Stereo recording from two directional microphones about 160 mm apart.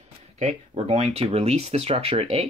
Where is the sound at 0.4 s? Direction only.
45° right (ahead or behind).